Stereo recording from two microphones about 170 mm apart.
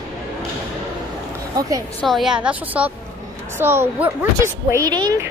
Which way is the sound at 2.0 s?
Centre (ahead or behind).